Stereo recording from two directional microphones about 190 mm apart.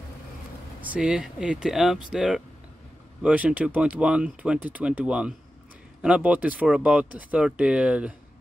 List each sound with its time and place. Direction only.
0.7 s speech: 5° right (ahead or behind)